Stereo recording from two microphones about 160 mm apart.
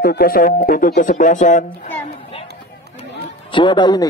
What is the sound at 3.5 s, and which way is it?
Speech, 30° left (ahead or behind).